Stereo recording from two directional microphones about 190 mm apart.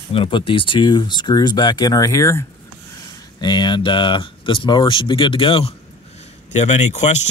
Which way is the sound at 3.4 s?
25° left (ahead or behind).